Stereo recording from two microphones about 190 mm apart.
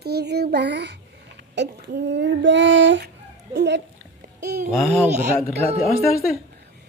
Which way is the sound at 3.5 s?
65° right (ahead or behind).